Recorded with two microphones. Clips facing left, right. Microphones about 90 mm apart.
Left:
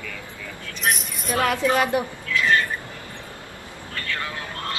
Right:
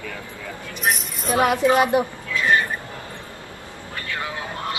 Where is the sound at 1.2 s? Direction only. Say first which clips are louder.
Right 4 dB; 20° right (ahead or behind).